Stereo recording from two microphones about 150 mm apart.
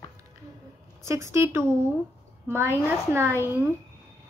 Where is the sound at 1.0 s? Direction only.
20° right (ahead or behind).